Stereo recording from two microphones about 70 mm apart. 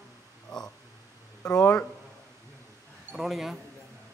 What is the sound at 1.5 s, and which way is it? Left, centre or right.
Speech, left.